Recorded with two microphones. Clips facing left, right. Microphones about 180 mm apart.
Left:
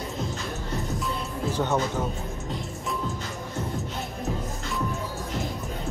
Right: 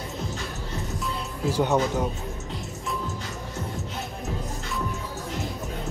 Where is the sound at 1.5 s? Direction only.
10° right (ahead or behind).